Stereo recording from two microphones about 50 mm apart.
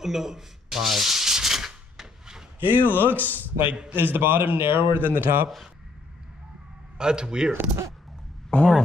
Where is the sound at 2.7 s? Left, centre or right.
Left.